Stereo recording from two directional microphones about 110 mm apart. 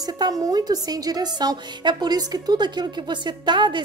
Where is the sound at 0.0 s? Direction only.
35° right (ahead or behind).